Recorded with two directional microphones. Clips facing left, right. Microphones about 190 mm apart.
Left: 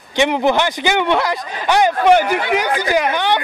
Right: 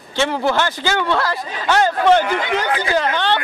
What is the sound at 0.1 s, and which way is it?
Speech, 15° left (ahead or behind).